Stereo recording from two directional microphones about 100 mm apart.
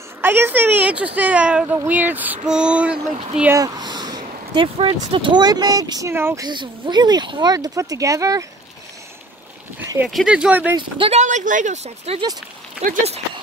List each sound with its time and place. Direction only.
0.2 s speech: 20° right (ahead or behind)
3.5 s a sound: 40° right (ahead or behind)
4.7 s speech: 70° right (ahead or behind)
5.3 s speech: 45° right (ahead or behind)
6.1 s speech: 25° right (ahead or behind)
6.4 s speech: 50° right (ahead or behind)
7.5 s speech: 35° right (ahead or behind)
10.0 s speech: 5° right (ahead or behind)
10.8 s speech: 60° right (ahead or behind)
12.1 s speech: 90° right